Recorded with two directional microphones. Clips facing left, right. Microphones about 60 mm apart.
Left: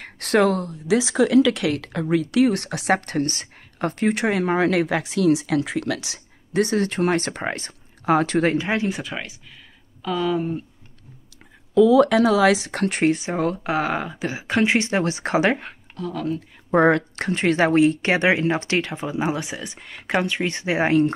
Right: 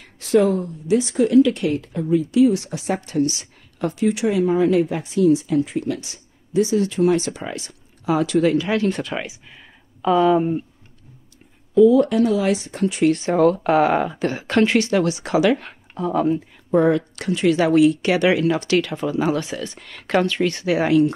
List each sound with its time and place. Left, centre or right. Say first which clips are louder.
0.0 s speech: right 2 dB; left
8.5 s speech: right 3 dB; left
8.8 s speech: right 4 dB; centre
9.2 s speech: right 4 dB; centre
11.7 s speech: right 1 dB; left
13.1 s speech: right 6 dB; centre
14.7 s speech: right 3 dB; left
16.0 s speech: right 7 dB; right
16.7 s speech: even; left
17.1 s speech: right 2 dB; left